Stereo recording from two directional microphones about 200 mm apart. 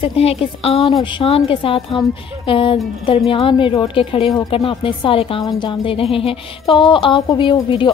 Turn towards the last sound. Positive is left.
turn(degrees=20)  # may be behind; listen again after turning